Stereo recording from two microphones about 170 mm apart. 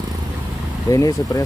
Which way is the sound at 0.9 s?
20° left (ahead or behind).